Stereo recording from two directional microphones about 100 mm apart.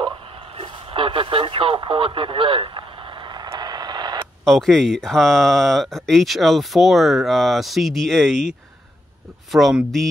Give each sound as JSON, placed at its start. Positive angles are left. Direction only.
{"t": 0.0, "sound": "radio", "side_deg": -55}
{"t": 3.5, "sound": "vehicle", "side_deg": -45}
{"t": 4.5, "sound": "speech", "side_deg": 0}